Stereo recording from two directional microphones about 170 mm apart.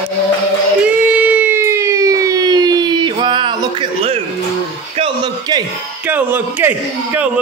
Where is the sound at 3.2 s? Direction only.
30° right (ahead or behind).